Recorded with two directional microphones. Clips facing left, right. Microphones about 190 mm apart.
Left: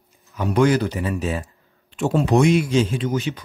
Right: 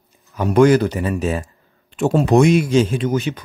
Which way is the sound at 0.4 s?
50° right (ahead or behind).